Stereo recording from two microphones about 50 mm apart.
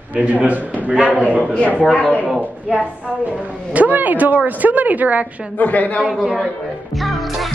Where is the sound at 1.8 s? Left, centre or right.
Centre.